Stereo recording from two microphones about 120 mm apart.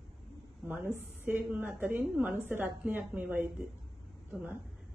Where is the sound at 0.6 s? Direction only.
20° right (ahead or behind).